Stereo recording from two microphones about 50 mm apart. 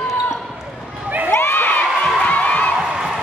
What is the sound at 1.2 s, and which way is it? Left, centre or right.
Crowd, left.